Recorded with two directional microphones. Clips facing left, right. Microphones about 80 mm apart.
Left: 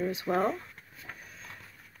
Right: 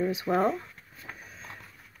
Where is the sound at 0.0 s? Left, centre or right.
Centre.